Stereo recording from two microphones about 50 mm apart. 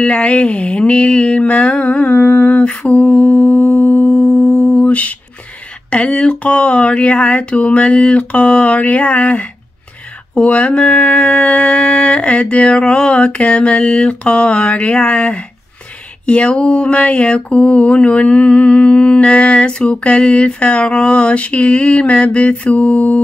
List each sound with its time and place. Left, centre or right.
0.0 s mantra: left